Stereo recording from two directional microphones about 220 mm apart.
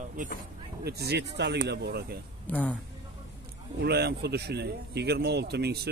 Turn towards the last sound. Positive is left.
turn(degrees=-50)  # may be behind; listen again after turning